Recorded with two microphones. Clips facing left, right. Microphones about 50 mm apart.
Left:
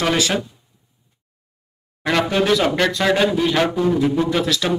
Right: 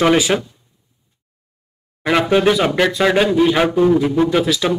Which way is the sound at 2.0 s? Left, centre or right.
Centre.